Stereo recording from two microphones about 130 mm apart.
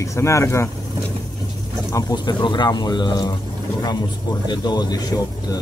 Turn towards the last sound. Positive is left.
turn(degrees=30)  # may be behind; listen again after turning